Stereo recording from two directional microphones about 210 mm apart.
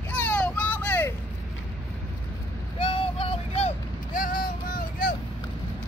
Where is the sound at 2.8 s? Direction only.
25° left (ahead or behind).